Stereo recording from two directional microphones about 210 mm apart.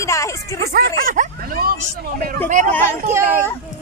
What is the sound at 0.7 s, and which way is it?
Hubbub, 45° right (ahead or behind).